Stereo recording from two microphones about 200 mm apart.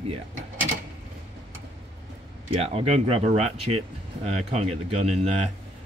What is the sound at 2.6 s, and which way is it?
Speech, 30° right (ahead or behind).